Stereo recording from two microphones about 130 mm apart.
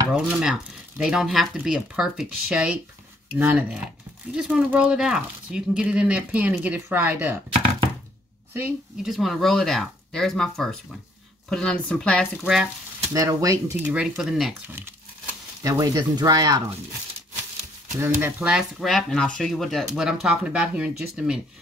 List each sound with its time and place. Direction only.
0.1 s speech: 5° right (ahead or behind)
9.0 s speech: centre (ahead or behind)
13.1 s speech: 25° right (ahead or behind)
13.8 s speech: 5° right (ahead or behind)
14.7 s speech: 20° right (ahead or behind)
17.9 s speech: 20° right (ahead or behind)
18.4 s speech: 5° right (ahead or behind)